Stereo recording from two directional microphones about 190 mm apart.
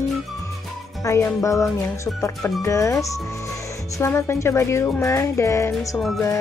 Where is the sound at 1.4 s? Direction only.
15° left (ahead or behind).